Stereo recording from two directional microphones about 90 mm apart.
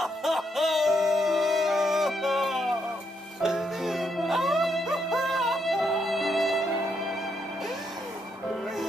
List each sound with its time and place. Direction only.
0.0 s music: centre (ahead or behind)